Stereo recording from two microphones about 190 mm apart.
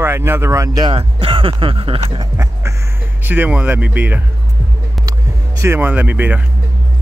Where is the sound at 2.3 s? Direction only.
15° right (ahead or behind).